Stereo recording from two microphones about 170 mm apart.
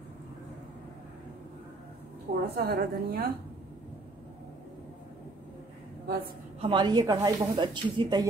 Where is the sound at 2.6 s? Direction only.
65° right (ahead or behind).